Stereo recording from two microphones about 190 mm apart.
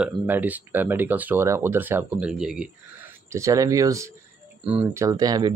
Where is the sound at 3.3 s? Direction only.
15° right (ahead or behind).